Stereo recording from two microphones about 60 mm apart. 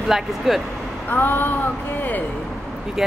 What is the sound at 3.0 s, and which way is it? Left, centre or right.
Speech, centre.